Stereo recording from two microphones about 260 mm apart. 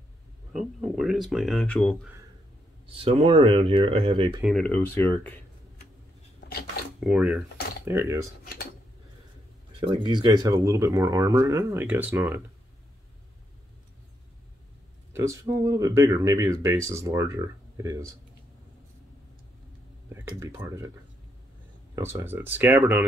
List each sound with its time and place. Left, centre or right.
0.5 s speech: centre
3.0 s speech: right
4.4 s speech: centre
7.0 s speech: centre
9.7 s speech: centre
15.1 s speech: centre
20.1 s speech: centre
21.9 s speech: centre